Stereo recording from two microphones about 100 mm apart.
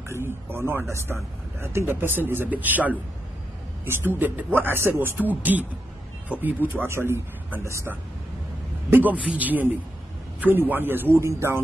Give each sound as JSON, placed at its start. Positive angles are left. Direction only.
{"t": 0.1, "sound": "speech", "side_deg": -25}